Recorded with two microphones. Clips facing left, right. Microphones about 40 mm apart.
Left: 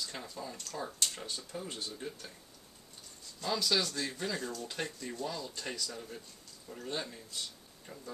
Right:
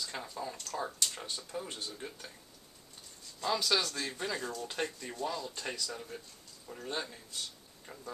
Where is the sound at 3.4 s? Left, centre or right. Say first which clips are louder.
Right 1 dB; centre.